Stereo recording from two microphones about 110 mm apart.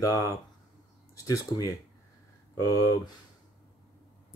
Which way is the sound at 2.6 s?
35° left (ahead or behind).